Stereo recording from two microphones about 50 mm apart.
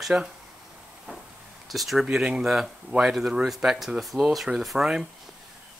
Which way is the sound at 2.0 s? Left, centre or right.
Centre.